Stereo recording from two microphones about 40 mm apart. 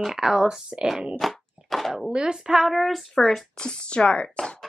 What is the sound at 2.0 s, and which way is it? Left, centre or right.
Speech, right.